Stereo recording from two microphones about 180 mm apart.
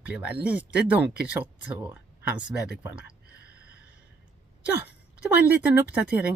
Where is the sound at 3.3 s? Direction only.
90° left.